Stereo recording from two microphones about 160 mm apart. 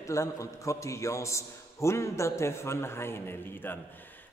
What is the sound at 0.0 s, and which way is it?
A man's voice, 20° left (ahead or behind).